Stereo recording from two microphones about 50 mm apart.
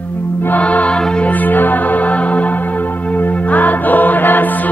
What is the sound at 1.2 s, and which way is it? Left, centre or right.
Music, left.